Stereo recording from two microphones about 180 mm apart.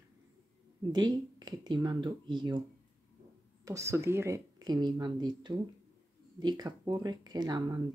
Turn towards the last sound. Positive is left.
turn(degrees=-20)  # may be behind; listen again after turning